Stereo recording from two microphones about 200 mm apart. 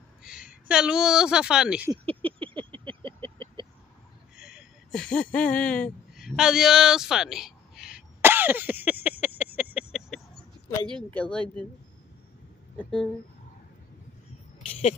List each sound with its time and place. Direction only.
0.2 s speech: 5° right (ahead or behind)
1.9 s vehicle: 25° right (ahead or behind)
4.4 s a sound: 5° right (ahead or behind)
10.9 s speech: 5° left (ahead or behind)
12.7 s speech: 5° left (ahead or behind)